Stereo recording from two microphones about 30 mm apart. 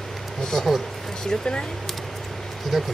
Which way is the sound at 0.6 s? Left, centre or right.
Centre.